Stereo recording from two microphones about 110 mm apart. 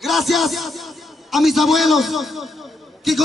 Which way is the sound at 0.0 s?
Centre (ahead or behind).